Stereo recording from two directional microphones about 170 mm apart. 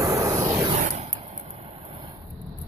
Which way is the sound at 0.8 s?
45° right (ahead or behind).